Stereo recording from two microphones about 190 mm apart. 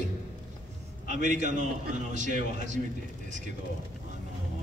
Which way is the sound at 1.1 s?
40° right (ahead or behind).